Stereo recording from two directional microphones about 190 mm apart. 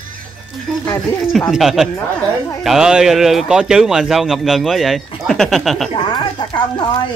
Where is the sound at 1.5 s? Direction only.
Centre (ahead or behind).